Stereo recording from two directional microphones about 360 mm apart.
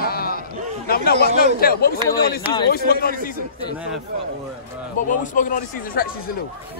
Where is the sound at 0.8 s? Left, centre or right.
Left.